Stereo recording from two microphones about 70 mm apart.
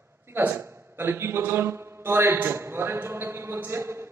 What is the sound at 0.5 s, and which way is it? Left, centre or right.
A man's voice, right.